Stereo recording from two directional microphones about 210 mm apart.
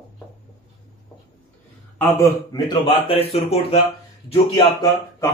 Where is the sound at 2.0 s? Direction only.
10° left (ahead or behind).